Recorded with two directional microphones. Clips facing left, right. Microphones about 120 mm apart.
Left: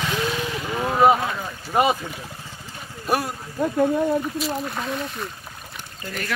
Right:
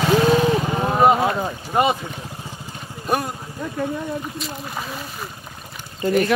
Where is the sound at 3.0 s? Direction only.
Centre (ahead or behind).